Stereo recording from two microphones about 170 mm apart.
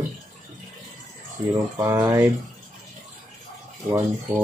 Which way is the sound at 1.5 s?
20° right (ahead or behind).